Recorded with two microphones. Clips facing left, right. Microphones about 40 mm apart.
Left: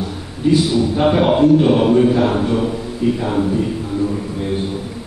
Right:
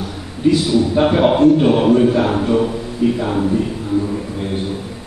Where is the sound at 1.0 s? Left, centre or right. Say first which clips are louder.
Even; centre.